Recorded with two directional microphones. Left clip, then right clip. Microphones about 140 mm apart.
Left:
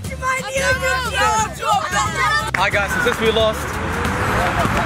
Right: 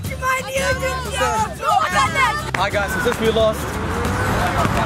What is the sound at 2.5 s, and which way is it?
Speech, centre (ahead or behind).